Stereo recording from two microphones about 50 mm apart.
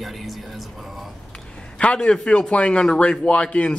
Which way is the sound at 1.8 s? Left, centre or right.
Left.